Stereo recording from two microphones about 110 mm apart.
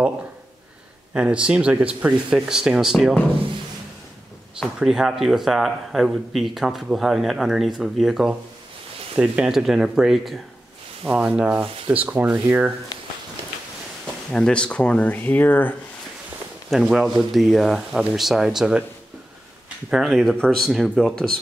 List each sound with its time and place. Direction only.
1.1 s speech: 10° right (ahead or behind)
4.6 s speech: 5° right (ahead or behind)
14.0 s speech: 10° left (ahead or behind)
16.7 s speech: centre (ahead or behind)
19.9 s speech: centre (ahead or behind)